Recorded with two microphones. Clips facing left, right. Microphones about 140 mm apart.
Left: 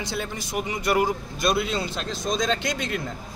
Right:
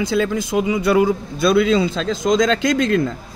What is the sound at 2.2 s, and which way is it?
Speech, 90° right.